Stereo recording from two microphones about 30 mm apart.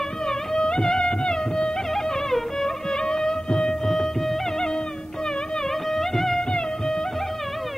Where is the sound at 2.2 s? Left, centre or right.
Centre.